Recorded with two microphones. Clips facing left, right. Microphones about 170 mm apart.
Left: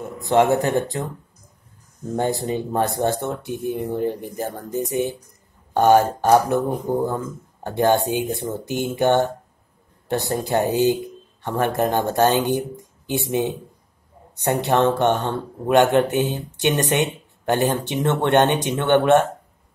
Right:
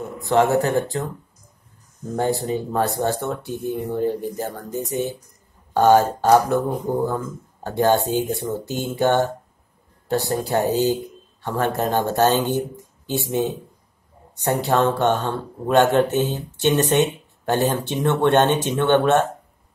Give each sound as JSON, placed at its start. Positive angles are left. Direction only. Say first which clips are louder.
{"t": 0.3, "sound": "speech", "louder": "left 1 dB", "side_deg": 20}
{"t": 2.1, "sound": "speech", "louder": "even", "side_deg": 20}